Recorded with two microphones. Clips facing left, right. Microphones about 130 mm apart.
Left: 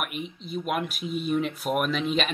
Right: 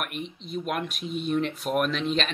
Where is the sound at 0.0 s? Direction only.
5° left (ahead or behind).